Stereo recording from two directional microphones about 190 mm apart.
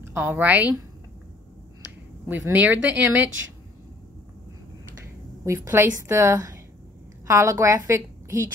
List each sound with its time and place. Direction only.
0.1 s a woman's voice: 10° right (ahead or behind)
2.2 s a woman's voice: 10° right (ahead or behind)
5.4 s a woman's voice: 15° right (ahead or behind)